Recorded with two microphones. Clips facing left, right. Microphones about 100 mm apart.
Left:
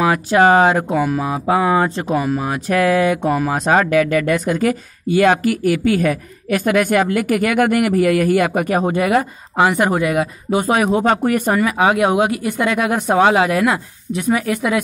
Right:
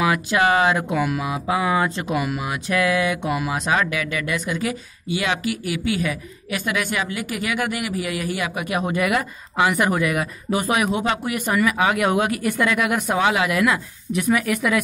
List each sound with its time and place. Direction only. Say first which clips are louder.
0.0 s speech: left 6 dB; 35° left (ahead or behind)